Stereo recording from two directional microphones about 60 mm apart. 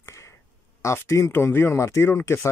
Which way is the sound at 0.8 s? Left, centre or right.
Left.